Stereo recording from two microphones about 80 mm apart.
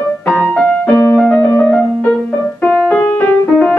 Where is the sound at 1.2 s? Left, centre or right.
Centre.